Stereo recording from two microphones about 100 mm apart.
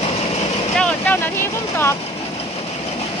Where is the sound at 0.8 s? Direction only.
10° left (ahead or behind).